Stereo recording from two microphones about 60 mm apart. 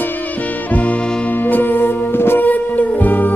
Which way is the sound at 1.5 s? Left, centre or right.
Left.